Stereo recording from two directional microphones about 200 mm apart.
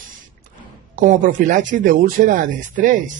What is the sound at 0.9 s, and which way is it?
Speech, 40° right (ahead or behind).